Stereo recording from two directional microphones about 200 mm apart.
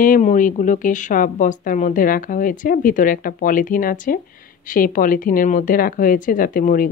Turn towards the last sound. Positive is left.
turn(degrees=40)  # may be behind; listen again after turning